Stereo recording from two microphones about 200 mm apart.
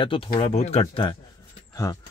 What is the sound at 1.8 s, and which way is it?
Speech, 15° left (ahead or behind).